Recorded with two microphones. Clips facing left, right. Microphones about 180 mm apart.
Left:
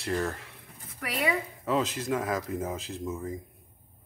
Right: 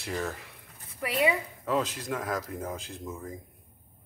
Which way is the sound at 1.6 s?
5° left (ahead or behind).